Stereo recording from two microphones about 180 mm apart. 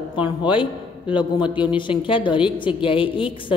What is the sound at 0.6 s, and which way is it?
A man's voice, 25° left (ahead or behind).